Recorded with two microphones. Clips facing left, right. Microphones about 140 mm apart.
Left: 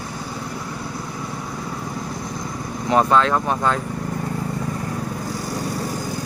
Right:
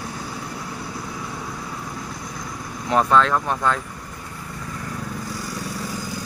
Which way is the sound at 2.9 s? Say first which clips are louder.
Left 1 dB; 5° left (ahead or behind).